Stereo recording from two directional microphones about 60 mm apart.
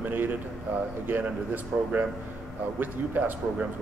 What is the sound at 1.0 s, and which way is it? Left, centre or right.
Speech, right.